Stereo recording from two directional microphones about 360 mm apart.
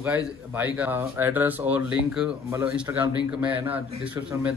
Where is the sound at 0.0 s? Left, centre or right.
Centre.